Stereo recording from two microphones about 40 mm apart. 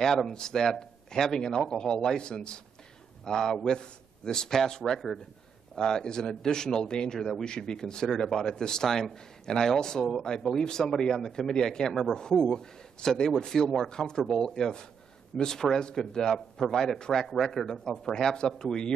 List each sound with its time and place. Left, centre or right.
0.0 s a man's voice: centre
7.4 s speech: left